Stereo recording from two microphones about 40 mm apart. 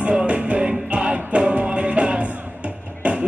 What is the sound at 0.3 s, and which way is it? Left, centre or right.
Music, right.